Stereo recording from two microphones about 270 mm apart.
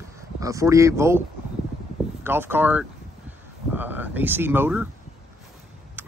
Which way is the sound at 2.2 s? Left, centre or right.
Centre.